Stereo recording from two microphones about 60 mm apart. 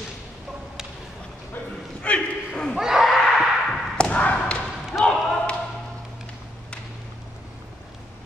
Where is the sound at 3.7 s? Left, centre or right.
Centre.